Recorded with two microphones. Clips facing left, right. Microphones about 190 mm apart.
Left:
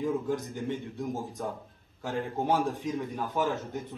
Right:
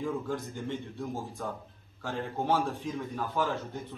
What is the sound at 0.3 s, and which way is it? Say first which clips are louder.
A man's voice: left 3 dB; 15° left (ahead or behind).